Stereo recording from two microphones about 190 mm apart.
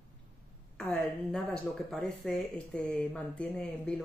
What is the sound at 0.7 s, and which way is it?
A woman's voice, 5° left (ahead or behind).